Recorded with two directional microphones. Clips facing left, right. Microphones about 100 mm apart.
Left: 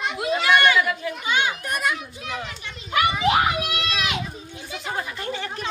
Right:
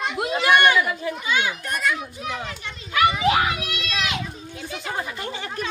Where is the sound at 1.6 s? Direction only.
10° left (ahead or behind).